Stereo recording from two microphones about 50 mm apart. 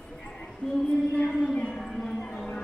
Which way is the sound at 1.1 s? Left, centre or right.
Centre.